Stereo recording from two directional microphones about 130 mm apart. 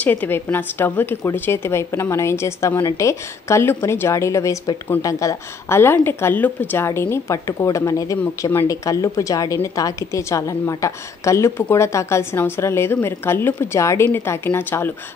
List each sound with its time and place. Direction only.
0.0 s a woman's voice: 10° left (ahead or behind)